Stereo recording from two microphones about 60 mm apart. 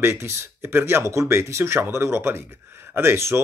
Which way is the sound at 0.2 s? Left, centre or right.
Right.